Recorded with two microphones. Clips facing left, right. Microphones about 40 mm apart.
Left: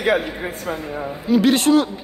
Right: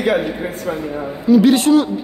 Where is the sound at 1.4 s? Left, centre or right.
Left.